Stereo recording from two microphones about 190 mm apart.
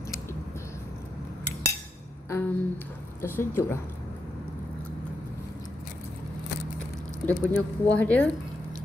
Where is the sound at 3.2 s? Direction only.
10° left (ahead or behind).